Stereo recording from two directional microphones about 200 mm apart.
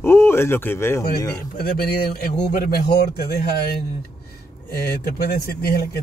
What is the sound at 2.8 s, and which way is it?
Speech, 50° left (ahead or behind).